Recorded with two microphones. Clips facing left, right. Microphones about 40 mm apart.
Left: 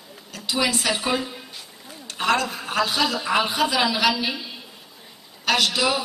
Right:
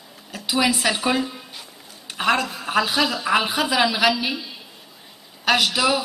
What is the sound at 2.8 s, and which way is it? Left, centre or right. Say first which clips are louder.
A woman's voice: right 2 dB; centre.